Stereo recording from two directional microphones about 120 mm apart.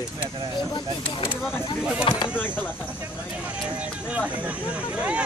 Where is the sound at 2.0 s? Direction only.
50° left (ahead or behind).